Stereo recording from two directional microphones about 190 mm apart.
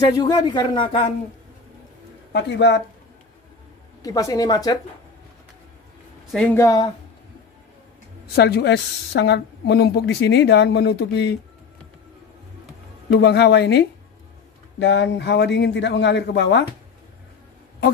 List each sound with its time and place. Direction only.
0.0 s speech: 20° left (ahead or behind)
2.3 s a woman's voice: 65° left (ahead or behind)
4.0 s speech: 20° left (ahead or behind)
6.3 s speech: 10° left (ahead or behind)
8.4 s a woman's voice: 60° left (ahead or behind)
13.1 s a woman's voice: 60° left (ahead or behind)